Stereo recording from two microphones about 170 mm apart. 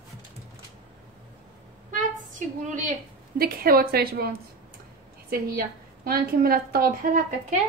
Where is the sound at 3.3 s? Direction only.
60° right (ahead or behind).